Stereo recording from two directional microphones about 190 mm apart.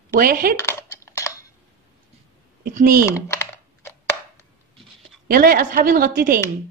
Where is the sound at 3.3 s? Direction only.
15° left (ahead or behind).